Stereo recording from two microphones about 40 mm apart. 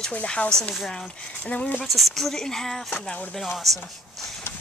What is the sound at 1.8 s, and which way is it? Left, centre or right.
Speech, centre.